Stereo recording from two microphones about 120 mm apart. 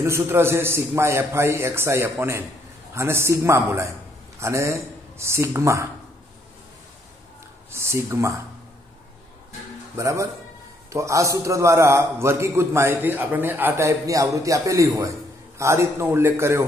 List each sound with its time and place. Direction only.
0.0 s a man's voice: 20° right (ahead or behind)
7.7 s a man's voice: 25° right (ahead or behind)
9.9 s a man's voice: 25° right (ahead or behind)